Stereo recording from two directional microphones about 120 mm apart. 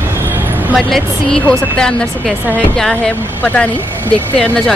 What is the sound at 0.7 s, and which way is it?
Speech, centre (ahead or behind).